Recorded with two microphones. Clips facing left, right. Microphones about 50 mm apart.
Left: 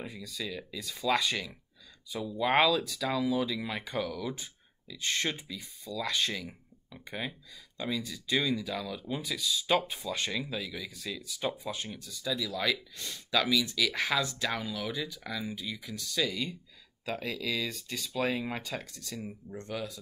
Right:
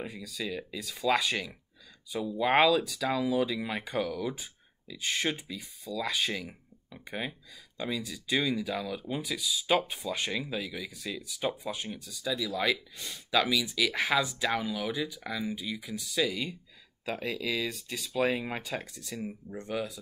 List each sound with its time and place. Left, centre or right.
0.1 s speech: centre